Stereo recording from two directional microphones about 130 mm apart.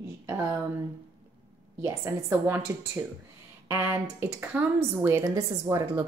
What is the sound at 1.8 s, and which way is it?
A woman's voice, 20° right (ahead or behind).